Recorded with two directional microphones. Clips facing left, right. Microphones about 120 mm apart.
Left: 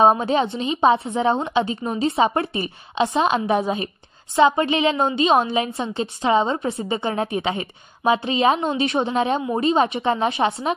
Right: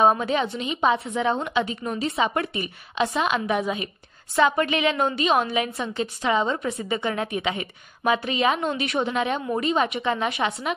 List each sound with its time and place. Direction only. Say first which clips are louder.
0.0 s a woman's voice: left 3 dB; 30° left (ahead or behind)